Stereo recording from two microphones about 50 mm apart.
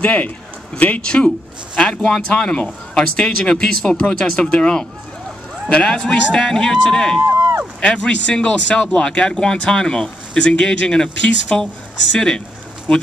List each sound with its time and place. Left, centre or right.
0.0 s speech: left
1.0 s speech: centre
5.9 s speech: centre